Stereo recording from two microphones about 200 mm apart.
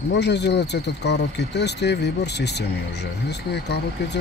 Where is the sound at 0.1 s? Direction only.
60° left (ahead or behind).